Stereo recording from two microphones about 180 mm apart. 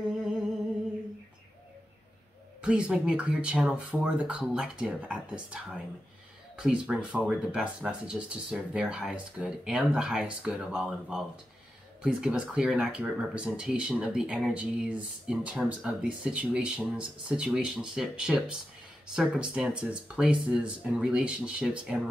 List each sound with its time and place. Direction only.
2.6 s speech: 5° right (ahead or behind)